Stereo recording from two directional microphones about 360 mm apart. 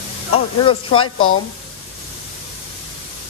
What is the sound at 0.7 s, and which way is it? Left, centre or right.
Speech, centre.